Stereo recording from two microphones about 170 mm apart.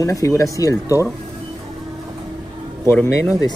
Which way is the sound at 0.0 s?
20° left (ahead or behind).